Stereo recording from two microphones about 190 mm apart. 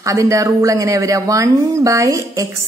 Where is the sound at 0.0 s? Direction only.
15° right (ahead or behind).